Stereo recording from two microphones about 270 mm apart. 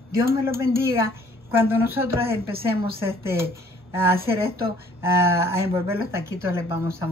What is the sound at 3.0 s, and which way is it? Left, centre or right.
Speech, centre.